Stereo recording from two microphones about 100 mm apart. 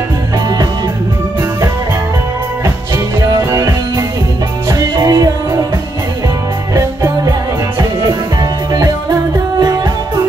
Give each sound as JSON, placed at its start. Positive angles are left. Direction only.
{"t": 3.2, "sound": "music", "side_deg": -35}
{"t": 6.7, "sound": "music", "side_deg": -30}
{"t": 9.6, "sound": "music", "side_deg": -40}